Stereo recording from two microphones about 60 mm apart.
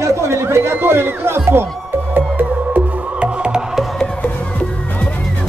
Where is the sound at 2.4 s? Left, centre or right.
Right; by 3.9 s centre.